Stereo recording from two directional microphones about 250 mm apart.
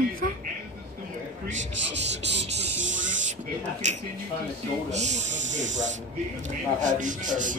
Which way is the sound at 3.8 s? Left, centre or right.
Right.